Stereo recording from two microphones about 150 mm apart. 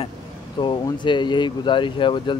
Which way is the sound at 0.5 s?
30° left (ahead or behind).